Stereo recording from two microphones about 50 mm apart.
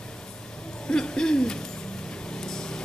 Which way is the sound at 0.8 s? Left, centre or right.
Centre.